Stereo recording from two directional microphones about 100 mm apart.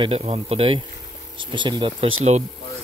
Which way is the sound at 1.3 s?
50° right (ahead or behind).